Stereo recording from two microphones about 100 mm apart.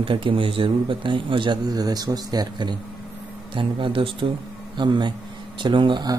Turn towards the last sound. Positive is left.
turn(degrees=-55)  # may be behind; listen again after turning